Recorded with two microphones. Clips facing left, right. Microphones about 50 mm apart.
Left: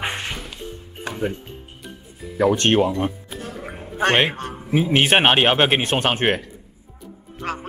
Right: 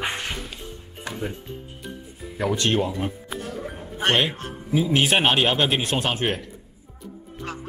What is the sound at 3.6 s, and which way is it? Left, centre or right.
Bow-wow, left.